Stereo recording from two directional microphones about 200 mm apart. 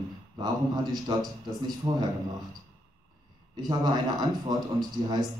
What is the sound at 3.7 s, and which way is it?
Speech, 20° right (ahead or behind).